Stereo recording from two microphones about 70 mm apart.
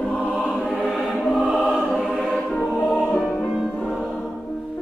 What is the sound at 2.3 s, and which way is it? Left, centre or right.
Music, centre.